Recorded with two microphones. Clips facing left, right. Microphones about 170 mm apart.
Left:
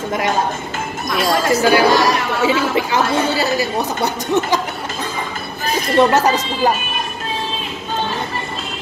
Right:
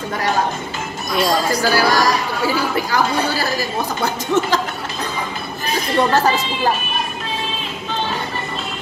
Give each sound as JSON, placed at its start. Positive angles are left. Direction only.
{"t": 1.1, "sound": "speech", "side_deg": 0}
{"t": 1.7, "sound": "a woman's voice", "side_deg": 20}
{"t": 5.9, "sound": "speech", "side_deg": 20}